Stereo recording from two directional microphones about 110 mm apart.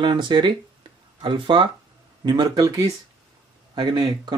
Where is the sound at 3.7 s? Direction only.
40° right (ahead or behind).